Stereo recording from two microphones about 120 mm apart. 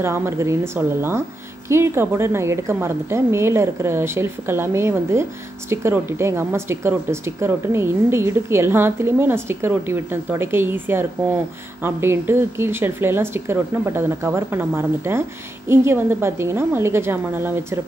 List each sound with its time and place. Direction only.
0.0 s speech: 20° right (ahead or behind)